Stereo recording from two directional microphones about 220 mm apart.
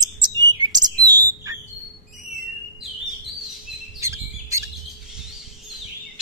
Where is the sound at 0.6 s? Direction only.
20° right (ahead or behind).